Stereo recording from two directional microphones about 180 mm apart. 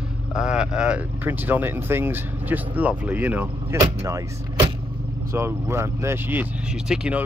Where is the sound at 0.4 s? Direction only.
5° right (ahead or behind).